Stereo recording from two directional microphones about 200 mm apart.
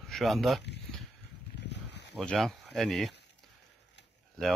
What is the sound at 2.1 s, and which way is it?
Speech, 5° left (ahead or behind).